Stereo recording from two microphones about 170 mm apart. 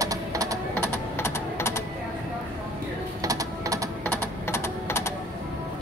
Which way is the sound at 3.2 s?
20° right (ahead or behind).